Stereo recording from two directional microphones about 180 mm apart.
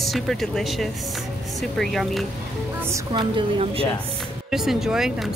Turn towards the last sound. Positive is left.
turn(degrees=0)  # may be behind; listen again after turning